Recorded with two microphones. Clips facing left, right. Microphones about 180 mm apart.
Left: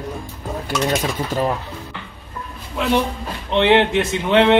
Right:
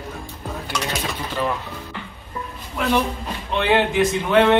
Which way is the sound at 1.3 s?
40° left (ahead or behind).